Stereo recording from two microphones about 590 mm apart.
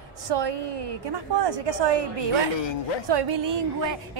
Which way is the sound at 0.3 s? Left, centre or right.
Right.